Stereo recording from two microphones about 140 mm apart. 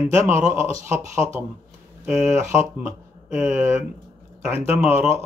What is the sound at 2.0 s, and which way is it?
Speech, 20° right (ahead or behind).